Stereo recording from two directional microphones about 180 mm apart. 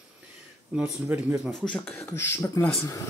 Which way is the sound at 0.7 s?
10° right (ahead or behind).